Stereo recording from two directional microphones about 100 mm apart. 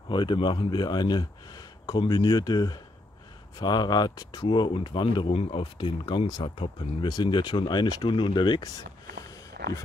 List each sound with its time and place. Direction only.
0.1 s speech: 50° left (ahead or behind)
5.3 s speech: 70° left (ahead or behind); by 8.6 s 50° left (ahead or behind)